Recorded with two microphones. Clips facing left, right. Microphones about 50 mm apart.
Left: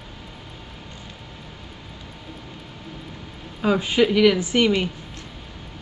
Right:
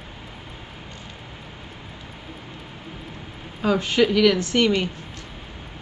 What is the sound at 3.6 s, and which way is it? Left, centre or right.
A woman's voice, centre.